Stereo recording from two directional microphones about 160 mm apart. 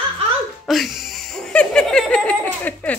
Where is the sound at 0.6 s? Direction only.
Centre (ahead or behind).